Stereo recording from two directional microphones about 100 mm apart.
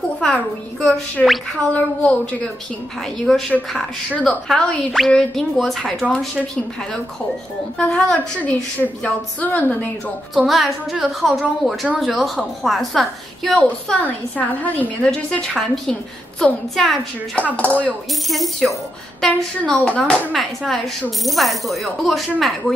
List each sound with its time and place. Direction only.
0.2 s a woman's voice: 5° left (ahead or behind)
7.7 s a woman's voice: 15° left (ahead or behind)
10.3 s speech: centre (ahead or behind)
14.3 s a woman's voice: 15° left (ahead or behind)
17.6 s a woman's voice: 15° left (ahead or behind)
18.3 s speech: centre (ahead or behind)